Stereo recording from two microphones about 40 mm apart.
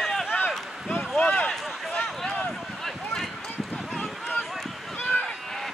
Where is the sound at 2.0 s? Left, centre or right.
Centre.